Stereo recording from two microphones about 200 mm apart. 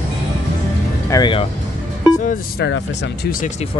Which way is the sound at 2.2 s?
50° left (ahead or behind).